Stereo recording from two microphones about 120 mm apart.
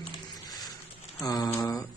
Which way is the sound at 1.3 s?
25° left (ahead or behind).